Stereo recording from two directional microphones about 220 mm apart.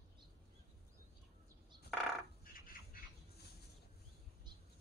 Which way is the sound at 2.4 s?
40° left (ahead or behind).